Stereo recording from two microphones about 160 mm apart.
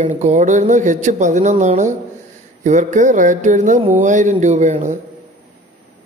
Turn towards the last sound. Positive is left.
turn(degrees=-50)  # may be behind; listen again after turning